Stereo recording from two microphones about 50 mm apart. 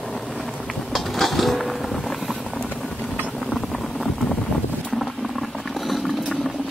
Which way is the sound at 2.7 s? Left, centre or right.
Centre.